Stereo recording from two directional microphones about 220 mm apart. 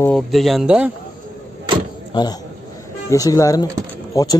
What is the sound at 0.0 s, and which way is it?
Speech, centre (ahead or behind).